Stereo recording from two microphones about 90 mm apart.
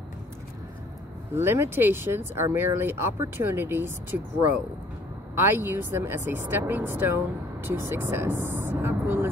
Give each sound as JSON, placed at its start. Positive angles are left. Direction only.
{"t": 1.3, "sound": "speech", "side_deg": -25}
{"t": 5.3, "sound": "speech", "side_deg": -25}